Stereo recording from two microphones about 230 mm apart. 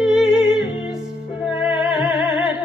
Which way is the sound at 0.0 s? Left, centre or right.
Centre.